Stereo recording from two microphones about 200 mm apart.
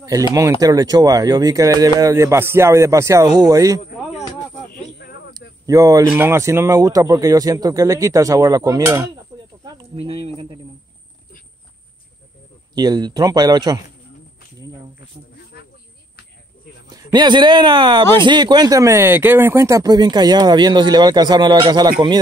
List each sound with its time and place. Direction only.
0.0 s speech: 15° right (ahead or behind)
4.6 s snake: 55° left (ahead or behind)
5.7 s speech: 15° right (ahead or behind)
9.8 s speech: 30° right (ahead or behind)
12.7 s speech: 20° right (ahead or behind)
15.5 s snake: 50° left (ahead or behind)
16.9 s speech: 20° right (ahead or behind)